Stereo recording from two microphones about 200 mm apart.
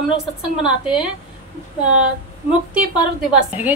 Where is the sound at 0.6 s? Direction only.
5° right (ahead or behind).